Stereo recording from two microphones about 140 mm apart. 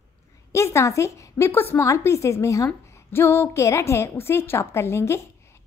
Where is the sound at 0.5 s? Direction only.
20° left (ahead or behind).